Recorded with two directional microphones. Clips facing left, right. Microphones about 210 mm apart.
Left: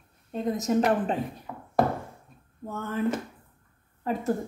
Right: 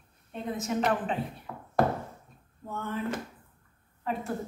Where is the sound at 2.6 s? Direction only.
45° left (ahead or behind).